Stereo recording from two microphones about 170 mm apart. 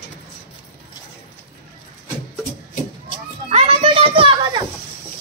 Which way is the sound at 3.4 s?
35° right (ahead or behind).